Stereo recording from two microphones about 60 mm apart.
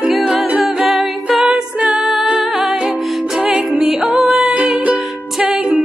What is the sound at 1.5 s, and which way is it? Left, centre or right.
Music, centre.